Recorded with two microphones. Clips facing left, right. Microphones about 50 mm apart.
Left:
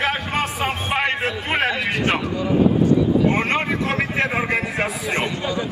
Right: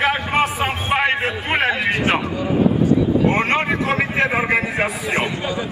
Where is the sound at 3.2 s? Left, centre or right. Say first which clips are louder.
Right 2 dB; centre.